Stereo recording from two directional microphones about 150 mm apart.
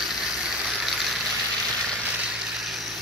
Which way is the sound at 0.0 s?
5° right (ahead or behind).